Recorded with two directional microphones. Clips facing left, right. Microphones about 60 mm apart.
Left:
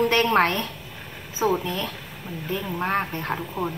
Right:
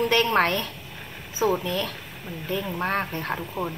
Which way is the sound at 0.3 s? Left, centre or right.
Left.